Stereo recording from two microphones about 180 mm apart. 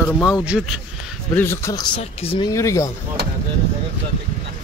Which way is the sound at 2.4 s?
15° left (ahead or behind).